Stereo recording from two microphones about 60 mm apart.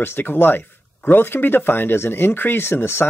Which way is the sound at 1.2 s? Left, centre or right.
Left.